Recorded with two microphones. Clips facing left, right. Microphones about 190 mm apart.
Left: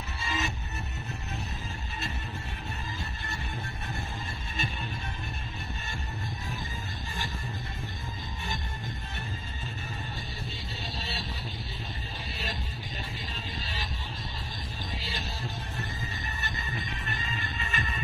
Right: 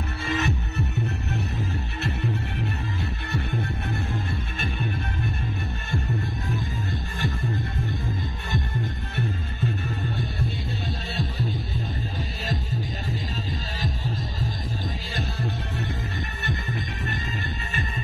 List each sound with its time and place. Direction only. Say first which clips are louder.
0.2 s music: right 8 dB; 60° right (ahead or behind)